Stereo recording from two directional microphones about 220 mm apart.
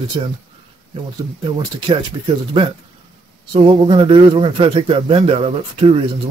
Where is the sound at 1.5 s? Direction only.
20° right (ahead or behind).